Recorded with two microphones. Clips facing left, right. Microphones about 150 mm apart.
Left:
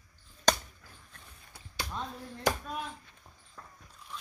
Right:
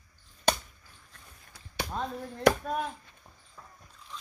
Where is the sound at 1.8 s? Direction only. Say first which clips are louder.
Right 5 dB; 55° right (ahead or behind).